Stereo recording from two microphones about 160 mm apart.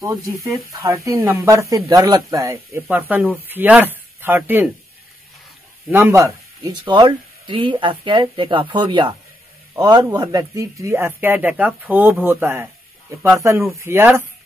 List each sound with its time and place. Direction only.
0.0 s speech: 20° right (ahead or behind)
5.9 s speech: 15° right (ahead or behind)
6.8 s speech: 30° right (ahead or behind); by 14.2 s 15° right (ahead or behind)